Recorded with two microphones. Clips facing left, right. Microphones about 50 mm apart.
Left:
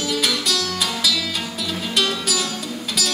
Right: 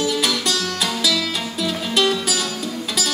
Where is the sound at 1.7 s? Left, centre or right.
Right.